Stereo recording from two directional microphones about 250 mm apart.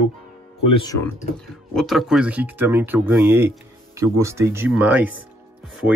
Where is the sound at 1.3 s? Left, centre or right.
Centre.